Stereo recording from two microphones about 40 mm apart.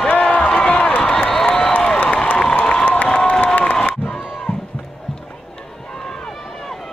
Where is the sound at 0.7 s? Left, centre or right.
Left.